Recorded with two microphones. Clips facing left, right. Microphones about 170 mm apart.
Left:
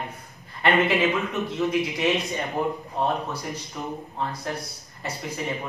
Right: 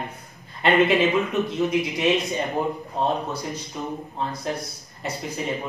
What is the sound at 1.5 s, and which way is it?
Speech, 20° right (ahead or behind).